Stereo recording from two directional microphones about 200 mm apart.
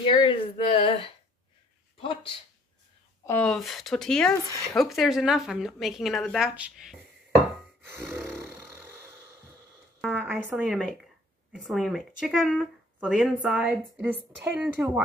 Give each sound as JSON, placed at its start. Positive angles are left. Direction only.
{"t": 0.0, "sound": "speech", "side_deg": 25}
{"t": 3.3, "sound": "a woman's voice", "side_deg": 5}
{"t": 8.1, "sound": "a sound", "side_deg": -10}
{"t": 10.0, "sound": "a woman's voice", "side_deg": -5}